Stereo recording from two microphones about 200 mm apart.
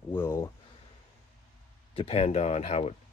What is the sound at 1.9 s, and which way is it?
Speech, 30° left (ahead or behind).